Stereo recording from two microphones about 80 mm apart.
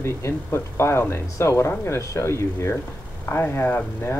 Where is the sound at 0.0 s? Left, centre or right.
Left.